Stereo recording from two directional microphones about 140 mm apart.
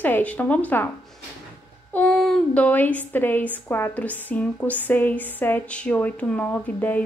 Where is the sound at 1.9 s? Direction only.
10° left (ahead or behind).